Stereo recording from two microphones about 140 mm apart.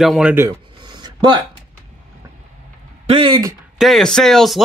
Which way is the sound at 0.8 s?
35° right (ahead or behind).